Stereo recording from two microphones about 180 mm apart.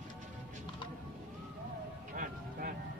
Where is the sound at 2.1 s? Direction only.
50° right (ahead or behind).